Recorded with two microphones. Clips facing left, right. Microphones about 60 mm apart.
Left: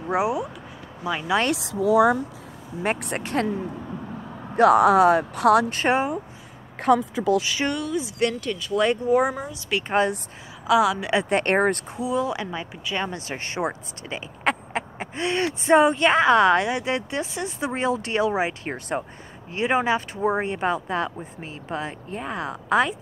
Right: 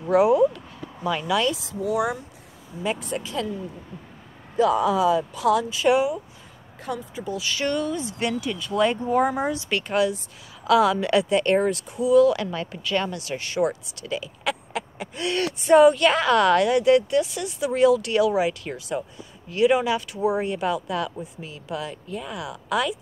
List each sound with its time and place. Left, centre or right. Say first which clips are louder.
0.0 s a woman's voice: right 6 dB; centre
1.5 s speech: left 5 dB; left
2.8 s speech: left 1 dB; left
5.9 s speech: right 2 dB; left
6.8 s speech: left 11 dB; left
7.4 s a woman's voice: even; centre
7.7 s speech: right 1 dB; centre
8.2 s speech: left 3 dB; centre
9.8 s speech: left 1 dB; left
10.7 s a woman's voice: right 1 dB; centre
11.2 s speech: even; left
12.0 s speech: right 10 dB; left
13.1 s speech: right 1 dB; left